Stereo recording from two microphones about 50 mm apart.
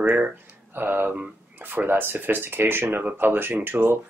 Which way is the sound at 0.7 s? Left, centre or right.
Right.